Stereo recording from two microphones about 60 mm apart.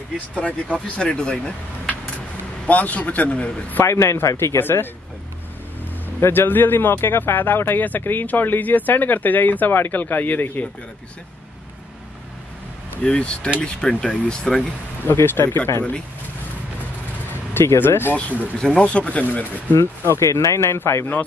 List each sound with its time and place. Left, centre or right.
0.3 s a man's voice: left
3.8 s speech: left
4.6 s speech: left
6.2 s speech: left
13.0 s speech: centre
15.1 s speech: left
17.6 s speech: left
18.6 s a man's voice: centre
19.7 s speech: left